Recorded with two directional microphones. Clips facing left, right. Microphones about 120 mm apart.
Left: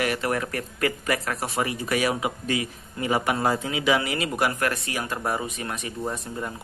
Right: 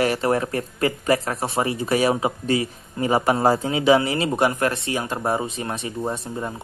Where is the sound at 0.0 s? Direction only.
30° right (ahead or behind).